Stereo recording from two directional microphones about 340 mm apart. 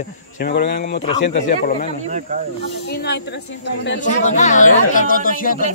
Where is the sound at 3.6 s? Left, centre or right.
Left.